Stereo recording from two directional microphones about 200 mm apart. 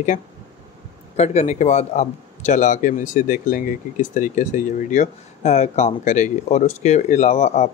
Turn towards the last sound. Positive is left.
turn(degrees=35)  # may be behind; listen again after turning